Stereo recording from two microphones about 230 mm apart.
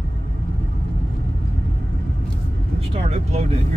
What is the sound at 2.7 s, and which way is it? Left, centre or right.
Vehicle, right.